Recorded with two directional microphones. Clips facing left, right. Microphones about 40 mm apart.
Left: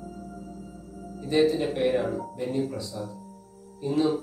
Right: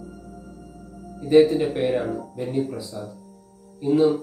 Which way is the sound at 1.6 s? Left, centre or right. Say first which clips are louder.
Right 2 dB; centre.